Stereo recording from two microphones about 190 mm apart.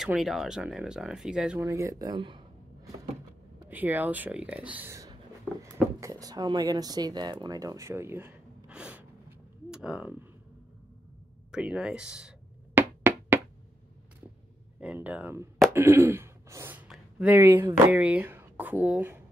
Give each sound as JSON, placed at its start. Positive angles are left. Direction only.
{"t": 0.0, "sound": "speech", "side_deg": 0}
{"t": 1.7, "sound": "speech", "side_deg": -15}
{"t": 3.6, "sound": "speech", "side_deg": -10}
{"t": 11.5, "sound": "music", "side_deg": -5}
{"t": 14.8, "sound": "speech", "side_deg": -10}